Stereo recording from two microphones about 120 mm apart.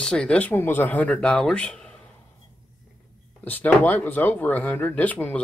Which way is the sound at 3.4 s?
15° left (ahead or behind).